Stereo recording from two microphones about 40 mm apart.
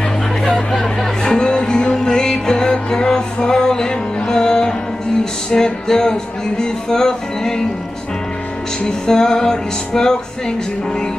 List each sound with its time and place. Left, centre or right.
1.2 s music: centre
8.8 s music: centre